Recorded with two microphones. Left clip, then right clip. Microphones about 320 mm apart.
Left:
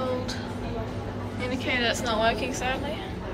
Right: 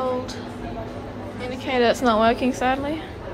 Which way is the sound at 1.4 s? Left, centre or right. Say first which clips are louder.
Right 2 dB; centre.